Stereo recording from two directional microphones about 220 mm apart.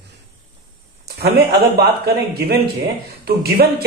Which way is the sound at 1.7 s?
45° right (ahead or behind).